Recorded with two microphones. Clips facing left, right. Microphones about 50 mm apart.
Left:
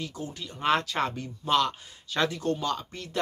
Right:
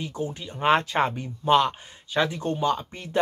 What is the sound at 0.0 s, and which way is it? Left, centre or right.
Speech, right.